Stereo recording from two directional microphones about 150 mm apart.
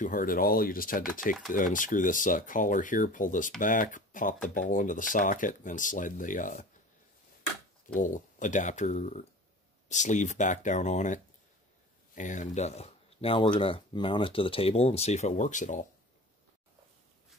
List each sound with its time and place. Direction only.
0.0 s speech: 65° left (ahead or behind)
7.8 s speech: 60° left (ahead or behind)
12.2 s speech: 55° left (ahead or behind)